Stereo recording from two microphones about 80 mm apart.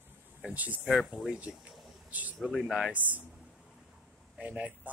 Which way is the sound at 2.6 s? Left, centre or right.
Centre.